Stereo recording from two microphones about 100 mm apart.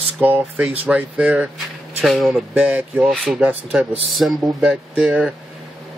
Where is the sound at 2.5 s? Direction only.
15° right (ahead or behind).